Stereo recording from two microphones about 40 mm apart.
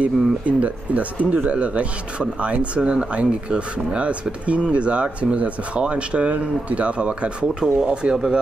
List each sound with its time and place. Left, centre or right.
0.0 s speech: right